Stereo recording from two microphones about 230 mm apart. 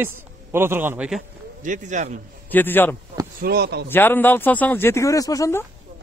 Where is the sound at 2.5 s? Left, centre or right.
Centre.